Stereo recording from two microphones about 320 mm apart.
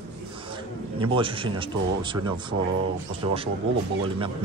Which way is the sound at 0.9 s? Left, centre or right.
Centre.